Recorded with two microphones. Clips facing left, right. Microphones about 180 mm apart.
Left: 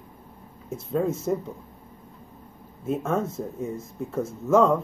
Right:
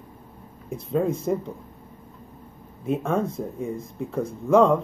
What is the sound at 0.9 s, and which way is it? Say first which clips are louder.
Speech: right 1 dB; centre (ahead or behind).